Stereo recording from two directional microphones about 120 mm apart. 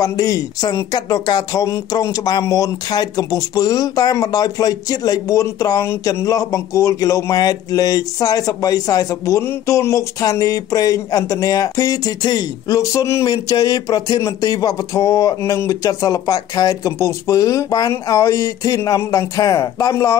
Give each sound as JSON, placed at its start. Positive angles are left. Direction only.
{"t": 0.0, "sound": "speech", "side_deg": 30}